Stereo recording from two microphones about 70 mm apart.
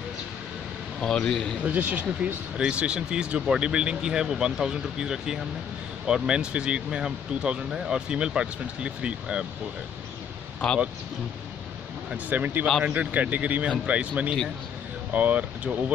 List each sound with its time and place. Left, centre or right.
1.0 s a man's voice: centre
1.6 s speech: right
2.5 s speech: centre
12.3 s speech: right